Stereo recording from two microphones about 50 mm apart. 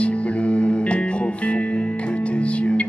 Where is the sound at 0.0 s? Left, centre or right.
Left.